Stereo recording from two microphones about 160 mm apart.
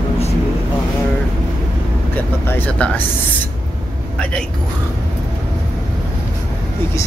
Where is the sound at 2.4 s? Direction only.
10° left (ahead or behind).